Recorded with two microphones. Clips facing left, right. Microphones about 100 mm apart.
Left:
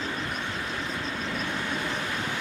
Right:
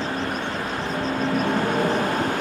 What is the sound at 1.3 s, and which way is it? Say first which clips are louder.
Vehicle: right 11 dB; 45° right (ahead or behind).